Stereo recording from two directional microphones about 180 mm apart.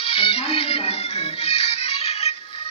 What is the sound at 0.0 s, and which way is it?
Music, 30° left (ahead or behind).